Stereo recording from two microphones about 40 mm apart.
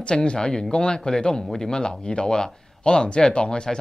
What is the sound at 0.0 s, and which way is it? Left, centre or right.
Speech, left.